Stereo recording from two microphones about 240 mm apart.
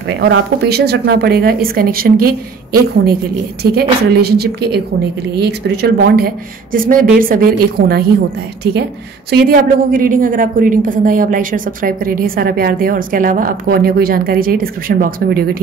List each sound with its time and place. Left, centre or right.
0.2 s a woman's voice: right
9.3 s a woman's voice: right